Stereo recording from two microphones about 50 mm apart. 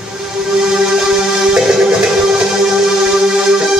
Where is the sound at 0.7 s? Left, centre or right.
Centre.